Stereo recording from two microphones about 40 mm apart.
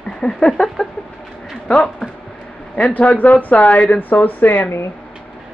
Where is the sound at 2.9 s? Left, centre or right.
Left.